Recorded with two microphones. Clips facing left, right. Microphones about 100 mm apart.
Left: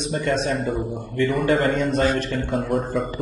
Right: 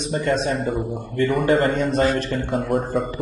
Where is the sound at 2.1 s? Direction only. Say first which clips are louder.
Right 1 dB; 30° right (ahead or behind).